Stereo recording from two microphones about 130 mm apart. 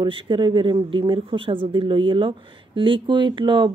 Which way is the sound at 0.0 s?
40° right (ahead or behind).